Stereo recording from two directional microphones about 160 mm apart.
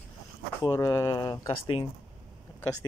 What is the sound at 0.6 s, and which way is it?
Speech, 20° left (ahead or behind).